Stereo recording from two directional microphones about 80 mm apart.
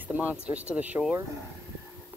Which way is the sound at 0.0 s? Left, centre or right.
Right.